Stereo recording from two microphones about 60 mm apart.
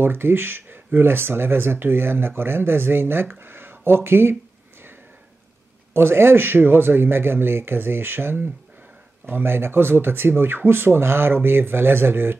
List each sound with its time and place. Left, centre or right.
0.0 s speech: right
5.9 s speech: right